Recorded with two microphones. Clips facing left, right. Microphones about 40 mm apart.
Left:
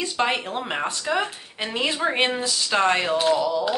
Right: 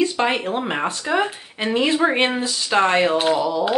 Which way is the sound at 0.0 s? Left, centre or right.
Centre.